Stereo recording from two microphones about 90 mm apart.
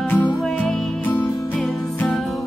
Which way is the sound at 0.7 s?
20° left (ahead or behind).